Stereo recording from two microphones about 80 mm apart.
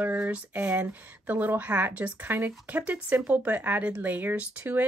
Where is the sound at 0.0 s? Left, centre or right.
Right.